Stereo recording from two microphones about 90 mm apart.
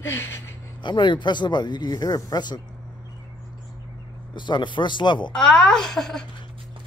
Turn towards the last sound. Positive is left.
turn(degrees=5)  # may be behind; listen again after turning